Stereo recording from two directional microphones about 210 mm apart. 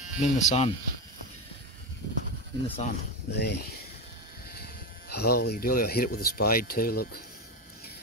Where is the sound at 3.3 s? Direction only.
55° left (ahead or behind).